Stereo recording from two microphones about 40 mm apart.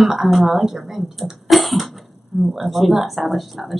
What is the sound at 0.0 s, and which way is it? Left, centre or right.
A woman's voice, centre.